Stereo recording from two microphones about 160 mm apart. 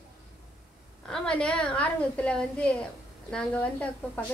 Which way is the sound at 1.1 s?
5° left (ahead or behind).